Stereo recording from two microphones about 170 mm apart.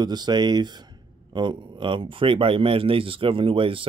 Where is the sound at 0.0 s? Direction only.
25° right (ahead or behind).